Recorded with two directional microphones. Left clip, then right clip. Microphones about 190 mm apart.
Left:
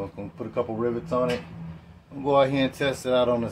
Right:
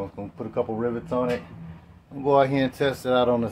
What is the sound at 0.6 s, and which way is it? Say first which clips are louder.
Speech: even; 25° right (ahead or behind).